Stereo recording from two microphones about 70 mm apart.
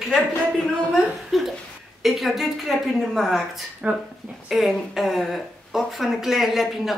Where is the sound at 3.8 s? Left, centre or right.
Centre.